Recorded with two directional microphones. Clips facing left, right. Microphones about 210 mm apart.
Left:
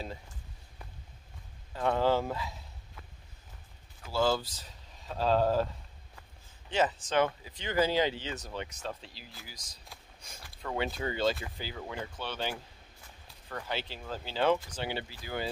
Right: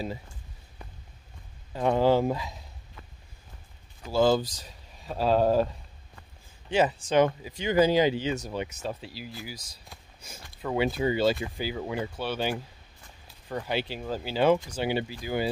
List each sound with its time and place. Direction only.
1.7 s speech: 15° right (ahead or behind)
4.1 s speech: 15° right (ahead or behind)
6.7 s speech: 10° right (ahead or behind)